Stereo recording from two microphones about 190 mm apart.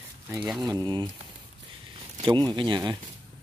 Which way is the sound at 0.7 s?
20° right (ahead or behind).